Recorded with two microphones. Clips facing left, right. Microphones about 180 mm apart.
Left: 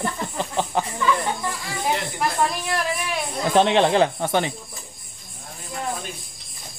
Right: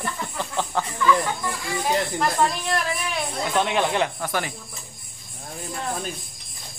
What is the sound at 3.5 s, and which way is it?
Speech, 30° left (ahead or behind).